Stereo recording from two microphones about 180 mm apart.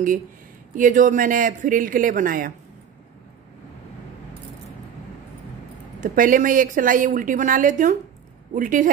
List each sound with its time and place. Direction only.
0.7 s speech: 45° right (ahead or behind)
5.9 s speech: 50° right (ahead or behind)